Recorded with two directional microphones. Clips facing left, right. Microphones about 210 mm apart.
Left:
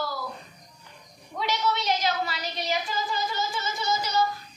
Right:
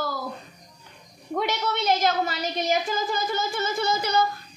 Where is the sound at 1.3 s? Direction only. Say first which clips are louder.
Right 2 dB; 50° right (ahead or behind).